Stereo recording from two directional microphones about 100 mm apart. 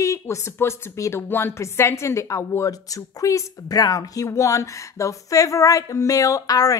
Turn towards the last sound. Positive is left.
turn(degrees=35)  # may be behind; listen again after turning